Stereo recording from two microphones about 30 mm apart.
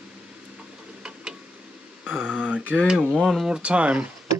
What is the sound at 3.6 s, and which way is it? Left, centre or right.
Speech, right.